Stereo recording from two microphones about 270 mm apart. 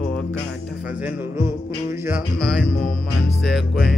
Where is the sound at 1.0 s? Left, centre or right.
Centre.